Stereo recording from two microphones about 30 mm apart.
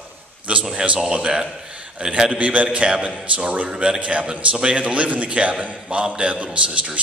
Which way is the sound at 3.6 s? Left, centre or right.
Right.